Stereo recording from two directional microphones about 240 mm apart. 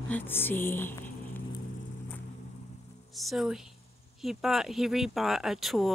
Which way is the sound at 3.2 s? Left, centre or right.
Centre.